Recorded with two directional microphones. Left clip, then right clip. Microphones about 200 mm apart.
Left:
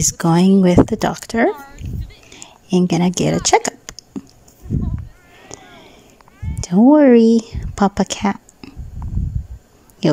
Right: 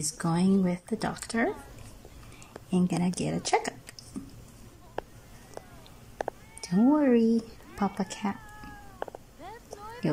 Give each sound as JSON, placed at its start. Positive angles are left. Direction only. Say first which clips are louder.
{"t": 0.0, "sound": "speech", "louder": "left 14 dB", "side_deg": 35}
{"t": 5.5, "sound": "a sound", "louder": "left 7 dB", "side_deg": 35}
{"t": 6.6, "sound": "speech", "louder": "left 14 dB", "side_deg": 35}